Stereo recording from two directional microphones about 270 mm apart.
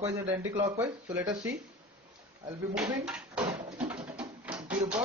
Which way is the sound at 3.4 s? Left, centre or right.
Centre.